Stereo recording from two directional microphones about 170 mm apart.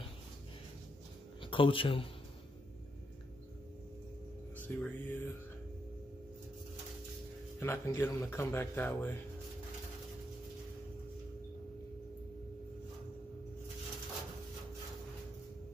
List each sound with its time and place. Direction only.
1.4 s speech: 30° left (ahead or behind)
4.6 s speech: 10° left (ahead or behind)
7.6 s speech: 15° left (ahead or behind)